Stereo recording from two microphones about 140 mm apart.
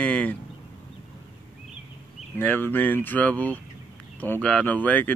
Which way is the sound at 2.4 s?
15° left (ahead or behind).